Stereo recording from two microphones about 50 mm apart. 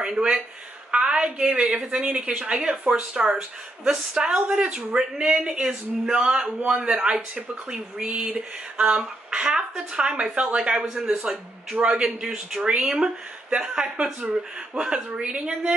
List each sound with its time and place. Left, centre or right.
0.0 s speech: centre